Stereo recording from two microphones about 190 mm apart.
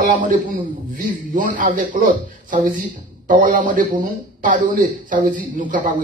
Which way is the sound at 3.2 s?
45° right (ahead or behind).